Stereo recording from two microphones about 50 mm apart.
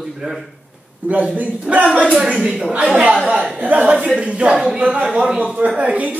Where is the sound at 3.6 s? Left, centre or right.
Right.